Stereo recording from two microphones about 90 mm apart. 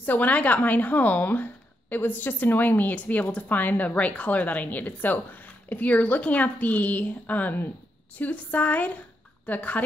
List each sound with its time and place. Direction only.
0.0 s a woman's voice: 20° left (ahead or behind)